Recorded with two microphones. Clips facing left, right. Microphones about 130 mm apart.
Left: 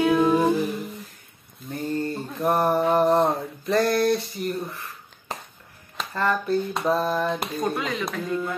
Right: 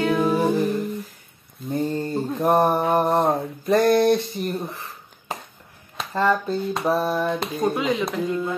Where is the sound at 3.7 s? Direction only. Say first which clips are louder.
Right 4 dB; 20° right (ahead or behind).